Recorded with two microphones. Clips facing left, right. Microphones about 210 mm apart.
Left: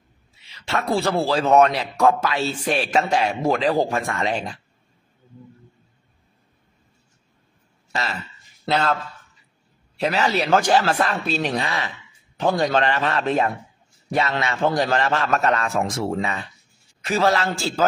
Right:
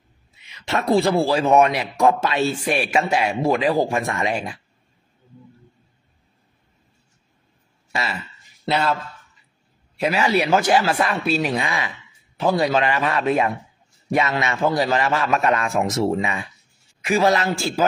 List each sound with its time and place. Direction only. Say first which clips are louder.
0.7 s a man's voice: right 4 dB; 20° right (ahead or behind)
2.5 s a man's voice: even; 10° right (ahead or behind)
7.9 s speech: right 1 dB; 10° right (ahead or behind)
9.9 s a man's voice: right 2 dB; 10° right (ahead or behind)